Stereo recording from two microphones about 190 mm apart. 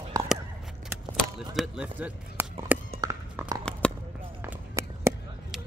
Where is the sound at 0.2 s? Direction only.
20° right (ahead or behind).